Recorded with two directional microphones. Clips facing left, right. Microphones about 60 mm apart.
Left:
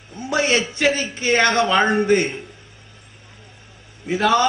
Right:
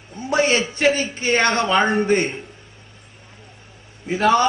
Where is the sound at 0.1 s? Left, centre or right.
Right.